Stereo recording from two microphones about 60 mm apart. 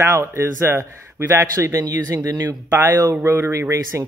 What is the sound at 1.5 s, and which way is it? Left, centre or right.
Speech, right.